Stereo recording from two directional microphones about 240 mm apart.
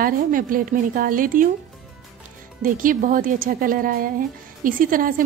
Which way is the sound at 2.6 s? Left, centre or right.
Right.